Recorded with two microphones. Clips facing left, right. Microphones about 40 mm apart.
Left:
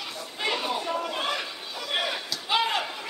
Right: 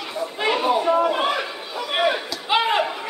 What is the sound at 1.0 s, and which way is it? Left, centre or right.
Slam, centre.